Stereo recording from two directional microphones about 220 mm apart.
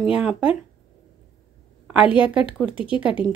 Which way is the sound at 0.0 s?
5° right (ahead or behind).